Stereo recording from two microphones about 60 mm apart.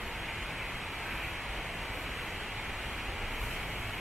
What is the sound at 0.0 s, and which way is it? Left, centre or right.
Vehicle, centre.